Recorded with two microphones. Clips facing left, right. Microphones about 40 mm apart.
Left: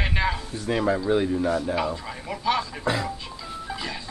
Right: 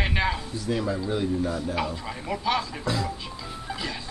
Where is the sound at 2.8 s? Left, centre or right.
Left.